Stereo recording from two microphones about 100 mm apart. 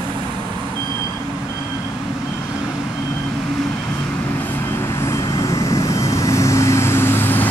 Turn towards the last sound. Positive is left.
turn(degrees=20)  # may be behind; listen again after turning